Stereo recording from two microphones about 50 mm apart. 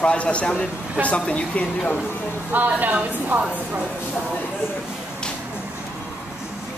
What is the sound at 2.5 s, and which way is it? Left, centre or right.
A woman's voice, right.